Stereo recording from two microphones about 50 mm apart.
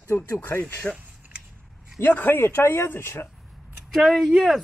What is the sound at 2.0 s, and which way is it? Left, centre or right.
Speech, left.